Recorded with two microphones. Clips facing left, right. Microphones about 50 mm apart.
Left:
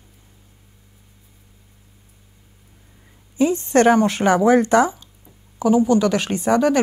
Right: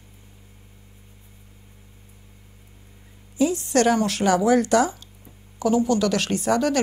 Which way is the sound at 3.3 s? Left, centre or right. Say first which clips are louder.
Left 4 dB; left.